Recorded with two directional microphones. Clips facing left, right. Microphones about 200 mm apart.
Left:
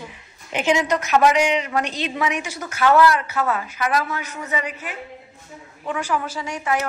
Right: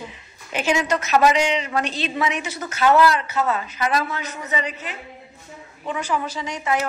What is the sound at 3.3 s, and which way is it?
A man's voice, 10° left (ahead or behind).